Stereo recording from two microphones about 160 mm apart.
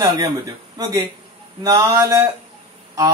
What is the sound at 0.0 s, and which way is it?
A man's voice, 20° right (ahead or behind).